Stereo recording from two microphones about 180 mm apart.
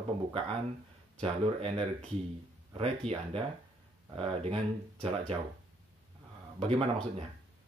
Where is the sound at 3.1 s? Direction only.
30° right (ahead or behind).